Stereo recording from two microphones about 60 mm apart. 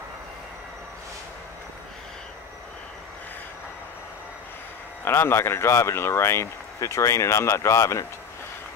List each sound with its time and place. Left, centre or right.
5.0 s speech: left